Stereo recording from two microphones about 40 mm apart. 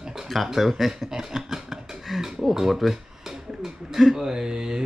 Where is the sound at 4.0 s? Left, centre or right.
Centre.